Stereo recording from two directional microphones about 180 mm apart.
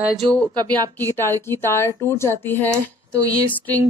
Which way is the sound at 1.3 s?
15° left (ahead or behind).